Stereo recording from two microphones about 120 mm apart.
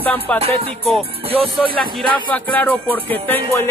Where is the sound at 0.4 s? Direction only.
55° right (ahead or behind).